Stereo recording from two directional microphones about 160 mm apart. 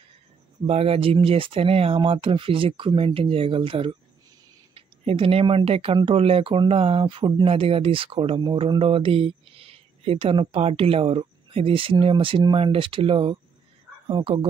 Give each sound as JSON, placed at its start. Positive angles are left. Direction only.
{"t": 0.7, "sound": "speech", "side_deg": -40}